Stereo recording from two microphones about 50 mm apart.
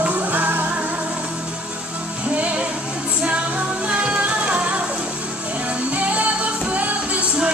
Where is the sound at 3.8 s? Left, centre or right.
Right.